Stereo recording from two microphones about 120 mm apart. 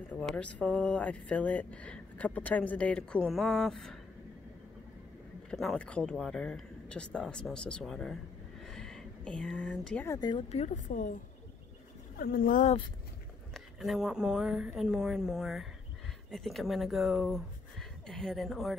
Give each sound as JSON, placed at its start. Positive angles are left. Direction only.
{"t": 0.1, "sound": "speech", "side_deg": 10}
{"t": 5.5, "sound": "speech", "side_deg": 5}
{"t": 10.0, "sound": "speech", "side_deg": 25}
{"t": 10.5, "sound": "a woman's voice", "side_deg": 70}
{"t": 13.5, "sound": "speech", "side_deg": -5}